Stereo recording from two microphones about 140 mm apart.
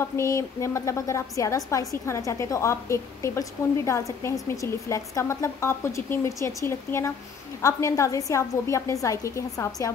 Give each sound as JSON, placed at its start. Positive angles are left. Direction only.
{"t": 0.0, "sound": "a woman's voice", "side_deg": 20}